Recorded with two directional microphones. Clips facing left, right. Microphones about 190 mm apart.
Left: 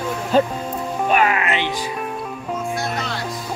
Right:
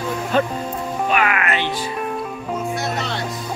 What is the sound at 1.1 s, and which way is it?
Music, 30° left (ahead or behind).